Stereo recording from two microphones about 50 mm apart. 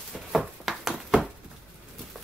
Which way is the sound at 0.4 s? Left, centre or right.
Centre.